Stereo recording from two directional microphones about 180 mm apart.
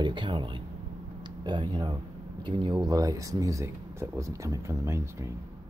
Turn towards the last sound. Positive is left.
turn(degrees=-15)  # may be behind; listen again after turning